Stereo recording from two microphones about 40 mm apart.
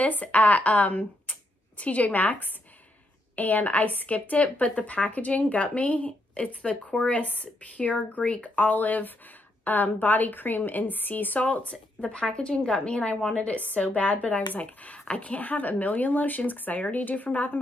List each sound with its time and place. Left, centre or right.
0.0 s a woman's voice: left
12.4 s a woman's voice: left
15.4 s speech: left